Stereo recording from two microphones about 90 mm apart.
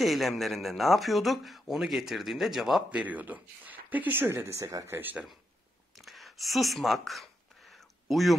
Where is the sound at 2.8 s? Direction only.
15° right (ahead or behind); by 4.9 s 35° right (ahead or behind).